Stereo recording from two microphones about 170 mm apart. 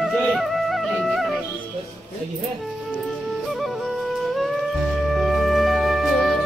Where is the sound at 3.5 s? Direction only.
Centre (ahead or behind).